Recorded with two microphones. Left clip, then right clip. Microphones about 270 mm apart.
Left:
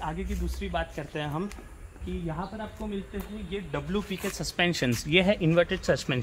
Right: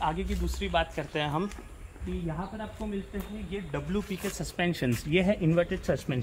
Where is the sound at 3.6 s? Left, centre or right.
Centre.